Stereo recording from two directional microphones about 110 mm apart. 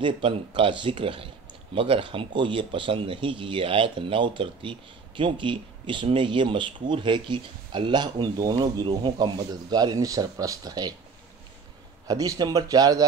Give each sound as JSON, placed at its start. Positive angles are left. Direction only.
{"t": 0.0, "sound": "speech", "side_deg": -50}
{"t": 12.1, "sound": "speech", "side_deg": -35}